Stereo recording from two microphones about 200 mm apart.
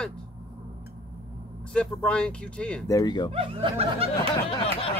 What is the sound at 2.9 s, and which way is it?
Speech, 20° left (ahead or behind).